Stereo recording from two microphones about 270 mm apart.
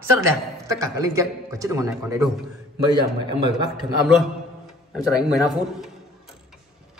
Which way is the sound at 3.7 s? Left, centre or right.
Centre.